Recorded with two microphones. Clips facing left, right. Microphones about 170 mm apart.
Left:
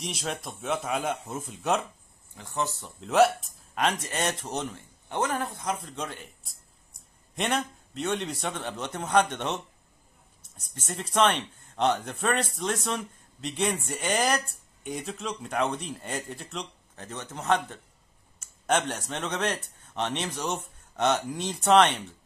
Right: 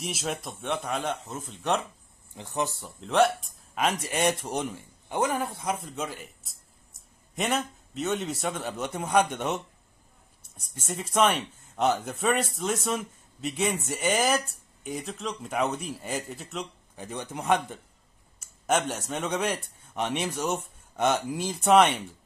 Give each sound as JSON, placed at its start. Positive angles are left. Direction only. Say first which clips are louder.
{"t": 0.0, "sound": "speech", "louder": "right 1 dB", "side_deg": 0}
{"t": 2.3, "sound": "speech", "louder": "right 1 dB", "side_deg": -15}
{"t": 3.0, "sound": "speech", "louder": "left 1 dB", "side_deg": 0}
{"t": 10.7, "sound": "speech", "louder": "right 1 dB", "side_deg": -5}